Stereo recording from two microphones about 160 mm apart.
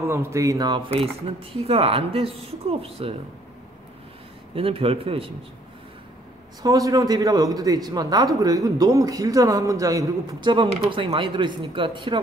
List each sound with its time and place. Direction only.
0.0 s speech: 15° right (ahead or behind); by 3.2 s 35° right (ahead or behind)
4.6 s speech: 35° right (ahead or behind)
6.6 s a man's voice: 20° right (ahead or behind)
10.5 s speech: 30° right (ahead or behind)